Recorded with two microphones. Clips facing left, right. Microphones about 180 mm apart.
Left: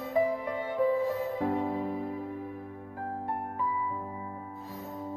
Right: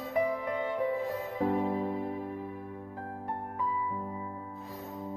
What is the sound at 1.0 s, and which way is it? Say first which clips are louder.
Music: left 2 dB; centre (ahead or behind).